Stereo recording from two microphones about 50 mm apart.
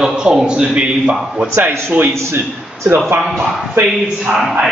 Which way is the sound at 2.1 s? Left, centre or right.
Right.